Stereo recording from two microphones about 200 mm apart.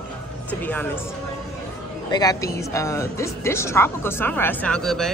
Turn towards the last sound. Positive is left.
turn(degrees=0)  # may be behind; listen again after turning